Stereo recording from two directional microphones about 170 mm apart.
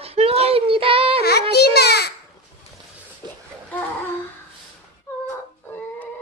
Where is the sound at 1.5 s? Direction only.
70° left (ahead or behind).